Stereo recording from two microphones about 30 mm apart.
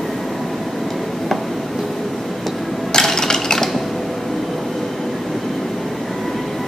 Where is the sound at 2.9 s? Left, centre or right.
Centre.